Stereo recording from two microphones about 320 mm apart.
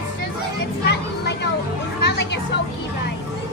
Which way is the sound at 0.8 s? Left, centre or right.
Left.